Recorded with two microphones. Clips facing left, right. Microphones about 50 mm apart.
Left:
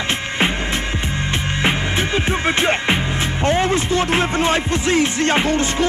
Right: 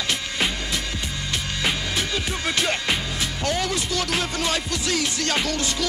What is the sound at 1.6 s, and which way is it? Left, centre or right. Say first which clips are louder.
Music: left 6 dB; left.